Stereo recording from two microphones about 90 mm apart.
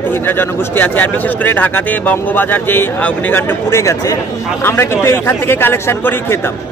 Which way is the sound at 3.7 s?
35° left (ahead or behind).